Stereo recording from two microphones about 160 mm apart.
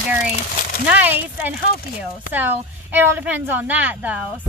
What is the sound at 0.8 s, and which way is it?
Speech, 10° right (ahead or behind).